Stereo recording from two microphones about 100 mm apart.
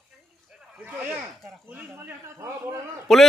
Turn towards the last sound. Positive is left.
turn(degrees=5)  # may be behind; listen again after turning